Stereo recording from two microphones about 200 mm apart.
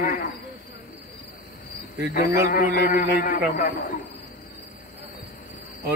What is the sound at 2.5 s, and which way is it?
A man's voice, 40° left (ahead or behind).